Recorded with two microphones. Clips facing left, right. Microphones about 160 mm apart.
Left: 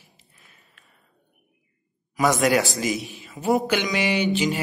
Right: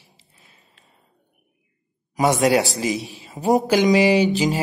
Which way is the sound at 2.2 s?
30° right (ahead or behind).